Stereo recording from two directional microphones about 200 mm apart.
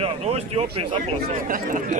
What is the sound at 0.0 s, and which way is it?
Speech, 30° right (ahead or behind).